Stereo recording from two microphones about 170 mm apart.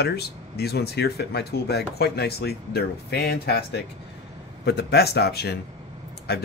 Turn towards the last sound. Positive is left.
turn(degrees=70)  # may be behind; listen again after turning